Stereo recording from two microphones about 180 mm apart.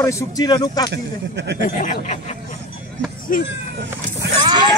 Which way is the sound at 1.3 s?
70° right (ahead or behind).